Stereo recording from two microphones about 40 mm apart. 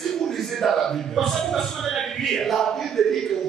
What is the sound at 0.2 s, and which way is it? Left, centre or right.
A man's voice, centre.